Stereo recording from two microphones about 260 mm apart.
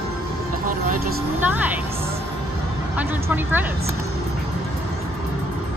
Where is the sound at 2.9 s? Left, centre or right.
Centre.